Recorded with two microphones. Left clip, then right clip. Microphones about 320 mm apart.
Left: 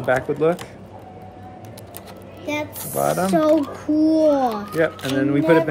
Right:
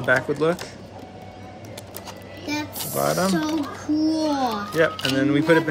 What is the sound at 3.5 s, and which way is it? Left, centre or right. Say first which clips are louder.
Speech: left 7 dB; centre.